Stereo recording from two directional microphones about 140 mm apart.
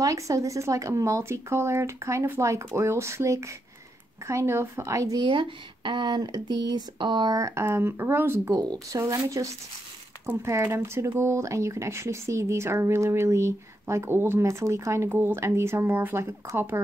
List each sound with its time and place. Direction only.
0.0 s speech: 25° right (ahead or behind)
5.2 s speech: 35° right (ahead or behind); by 16.8 s 20° right (ahead or behind)